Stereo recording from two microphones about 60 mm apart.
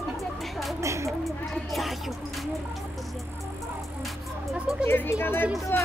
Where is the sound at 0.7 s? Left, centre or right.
Right.